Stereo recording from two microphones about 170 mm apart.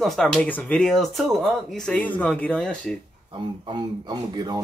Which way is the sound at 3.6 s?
25° right (ahead or behind).